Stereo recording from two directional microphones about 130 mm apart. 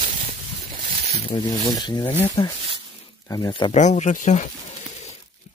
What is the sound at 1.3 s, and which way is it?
Speech, 30° left (ahead or behind).